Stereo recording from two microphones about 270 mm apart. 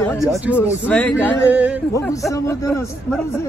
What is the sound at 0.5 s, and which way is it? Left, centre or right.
Carnatic music, centre.